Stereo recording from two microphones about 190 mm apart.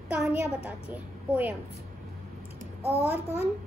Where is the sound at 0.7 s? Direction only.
10° right (ahead or behind).